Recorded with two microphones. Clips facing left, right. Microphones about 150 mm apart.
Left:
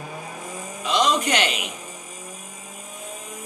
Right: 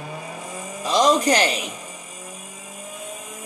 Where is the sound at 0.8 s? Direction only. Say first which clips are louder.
Right 3 dB; 40° right (ahead or behind).